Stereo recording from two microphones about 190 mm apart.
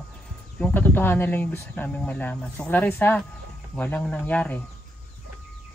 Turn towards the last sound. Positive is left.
turn(degrees=10)  # may be behind; listen again after turning